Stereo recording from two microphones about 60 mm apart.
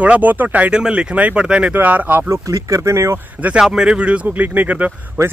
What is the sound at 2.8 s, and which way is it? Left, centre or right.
Speech, right.